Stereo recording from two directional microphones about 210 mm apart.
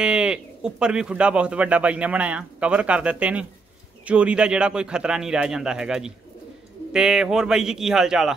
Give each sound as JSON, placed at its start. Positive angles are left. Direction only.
{"t": 0.0, "sound": "speech", "side_deg": -5}